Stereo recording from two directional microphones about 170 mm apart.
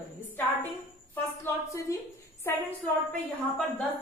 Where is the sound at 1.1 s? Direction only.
15° left (ahead or behind).